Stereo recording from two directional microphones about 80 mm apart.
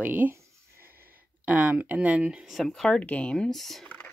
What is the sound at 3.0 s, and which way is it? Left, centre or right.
Speech, centre.